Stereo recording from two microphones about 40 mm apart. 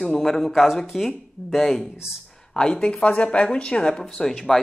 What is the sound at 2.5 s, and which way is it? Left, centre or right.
Speech, centre.